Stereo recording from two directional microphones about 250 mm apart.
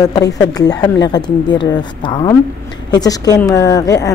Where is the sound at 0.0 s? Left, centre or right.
Centre.